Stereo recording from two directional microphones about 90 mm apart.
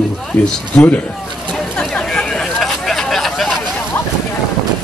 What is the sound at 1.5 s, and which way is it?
Chatter, 10° left (ahead or behind).